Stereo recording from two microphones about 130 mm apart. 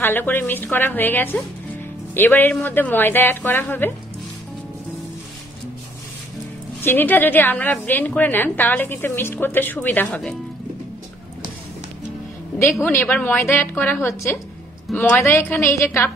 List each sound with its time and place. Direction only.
0.0 s a woman's voice: 15° left (ahead or behind)
6.8 s a woman's voice: 15° left (ahead or behind)
12.8 s a woman's voice: 15° left (ahead or behind)